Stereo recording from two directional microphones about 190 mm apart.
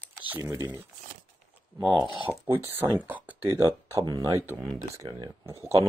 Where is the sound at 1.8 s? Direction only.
25° right (ahead or behind).